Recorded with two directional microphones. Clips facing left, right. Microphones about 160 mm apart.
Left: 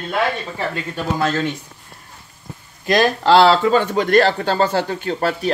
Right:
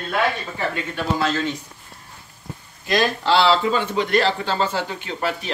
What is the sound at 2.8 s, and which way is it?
Speech, 50° left (ahead or behind).